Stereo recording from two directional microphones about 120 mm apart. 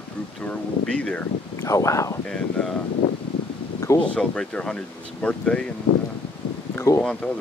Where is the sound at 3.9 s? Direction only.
25° left (ahead or behind).